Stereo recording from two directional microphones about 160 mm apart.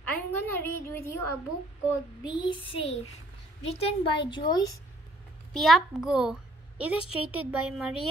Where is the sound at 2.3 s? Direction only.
30° left (ahead or behind).